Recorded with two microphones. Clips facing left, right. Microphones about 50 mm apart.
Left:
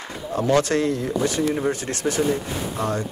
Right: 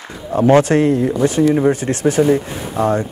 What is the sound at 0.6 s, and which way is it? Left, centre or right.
Speech, right.